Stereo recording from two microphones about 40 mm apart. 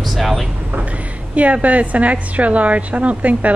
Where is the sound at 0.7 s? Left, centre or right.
Right.